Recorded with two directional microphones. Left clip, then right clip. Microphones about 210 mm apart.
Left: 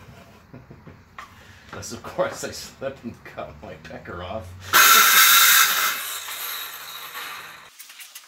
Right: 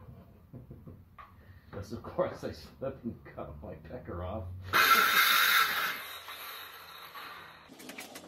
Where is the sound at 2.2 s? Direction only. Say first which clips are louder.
Left 8 dB; 10° right (ahead or behind).